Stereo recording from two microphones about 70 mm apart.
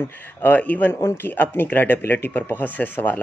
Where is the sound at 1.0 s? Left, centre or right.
Left.